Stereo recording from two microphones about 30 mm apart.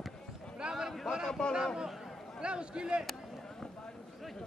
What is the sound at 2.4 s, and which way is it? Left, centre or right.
Speech, right.